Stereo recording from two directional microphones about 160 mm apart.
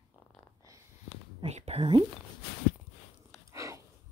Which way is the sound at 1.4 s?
40° right (ahead or behind).